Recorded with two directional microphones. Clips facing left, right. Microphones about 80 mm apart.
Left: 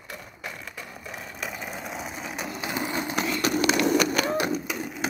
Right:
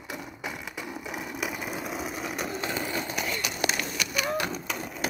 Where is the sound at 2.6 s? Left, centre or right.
Centre.